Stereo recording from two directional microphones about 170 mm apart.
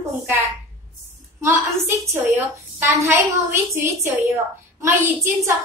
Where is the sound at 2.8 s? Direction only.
15° right (ahead or behind).